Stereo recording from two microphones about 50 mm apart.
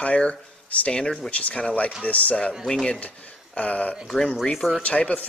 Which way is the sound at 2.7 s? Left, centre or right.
Centre.